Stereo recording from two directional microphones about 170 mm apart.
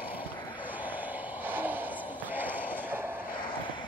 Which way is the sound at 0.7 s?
10° right (ahead or behind).